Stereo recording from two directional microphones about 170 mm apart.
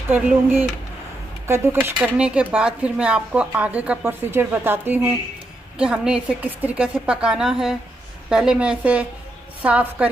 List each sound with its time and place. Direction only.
0.1 s a woman's voice: 10° right (ahead or behind)